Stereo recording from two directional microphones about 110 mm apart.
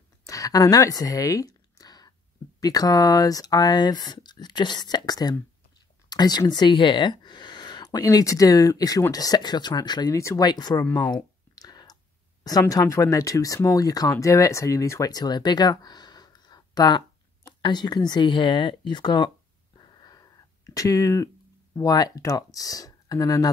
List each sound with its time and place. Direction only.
0.3 s a sound: 30° left (ahead or behind)
2.6 s speech: 35° left (ahead or behind)
11.5 s whispering: 35° left (ahead or behind)
12.4 s speech: 35° left (ahead or behind)